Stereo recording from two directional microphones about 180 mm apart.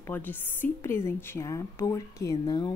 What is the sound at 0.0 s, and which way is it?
A woman's voice, 10° left (ahead or behind).